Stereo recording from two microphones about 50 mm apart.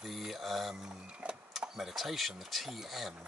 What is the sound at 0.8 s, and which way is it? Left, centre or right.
Speech, centre.